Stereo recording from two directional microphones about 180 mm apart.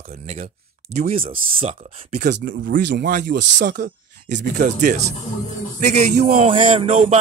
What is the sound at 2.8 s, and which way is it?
Speech, 70° right (ahead or behind).